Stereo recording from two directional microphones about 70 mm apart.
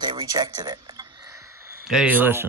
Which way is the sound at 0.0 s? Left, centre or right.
Right.